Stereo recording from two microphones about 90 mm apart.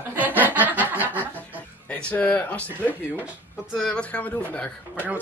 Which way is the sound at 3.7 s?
10° left (ahead or behind).